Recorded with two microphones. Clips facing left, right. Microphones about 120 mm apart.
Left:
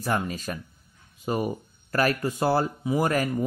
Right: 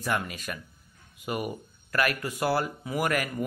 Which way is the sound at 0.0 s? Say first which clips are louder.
Left 3 dB; 30° left (ahead or behind).